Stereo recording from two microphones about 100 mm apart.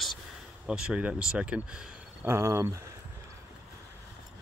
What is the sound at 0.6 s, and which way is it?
Speech, 10° right (ahead or behind).